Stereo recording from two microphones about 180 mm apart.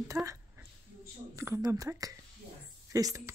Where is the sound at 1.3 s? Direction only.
15° right (ahead or behind).